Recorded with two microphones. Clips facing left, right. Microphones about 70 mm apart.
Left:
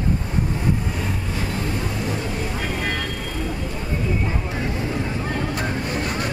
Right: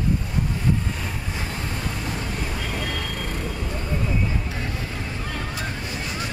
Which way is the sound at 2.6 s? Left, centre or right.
Left.